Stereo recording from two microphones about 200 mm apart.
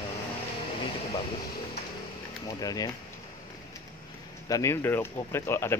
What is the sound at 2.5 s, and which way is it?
Speech, 20° left (ahead or behind).